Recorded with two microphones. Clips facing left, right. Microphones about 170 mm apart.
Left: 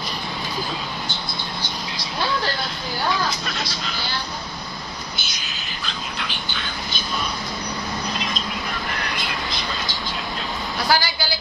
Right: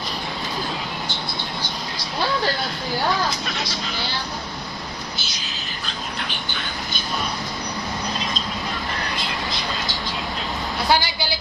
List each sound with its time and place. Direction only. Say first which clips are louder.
10.9 s a woman's voice: right 1 dB; 20° right (ahead or behind)